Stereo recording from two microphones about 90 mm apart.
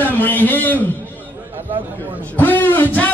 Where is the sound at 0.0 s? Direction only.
20° left (ahead or behind).